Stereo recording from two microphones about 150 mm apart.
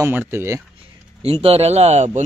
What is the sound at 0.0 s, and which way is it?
Speech, 15° right (ahead or behind).